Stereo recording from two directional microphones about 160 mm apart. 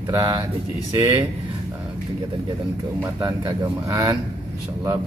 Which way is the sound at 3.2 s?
25° right (ahead or behind).